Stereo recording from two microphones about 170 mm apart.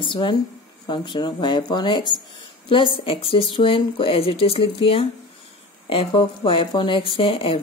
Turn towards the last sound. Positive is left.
turn(degrees=30)  # may be behind; listen again after turning